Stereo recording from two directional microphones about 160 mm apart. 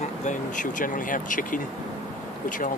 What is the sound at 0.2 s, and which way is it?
Speech, 55° left (ahead or behind).